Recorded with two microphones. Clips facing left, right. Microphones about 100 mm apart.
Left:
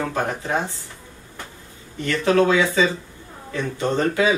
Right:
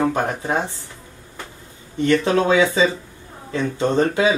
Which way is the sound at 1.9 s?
20° right (ahead or behind).